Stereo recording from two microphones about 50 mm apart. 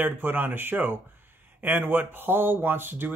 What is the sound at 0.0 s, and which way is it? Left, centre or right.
Speech, right.